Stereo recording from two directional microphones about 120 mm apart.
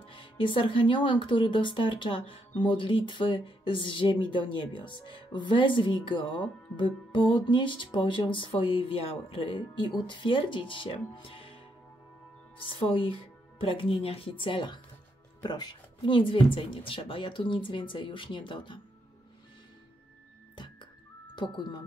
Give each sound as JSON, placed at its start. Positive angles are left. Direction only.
{"t": 0.0, "sound": "speech", "side_deg": 45}
{"t": 20.5, "sound": "music", "side_deg": 40}
{"t": 21.4, "sound": "speech", "side_deg": 40}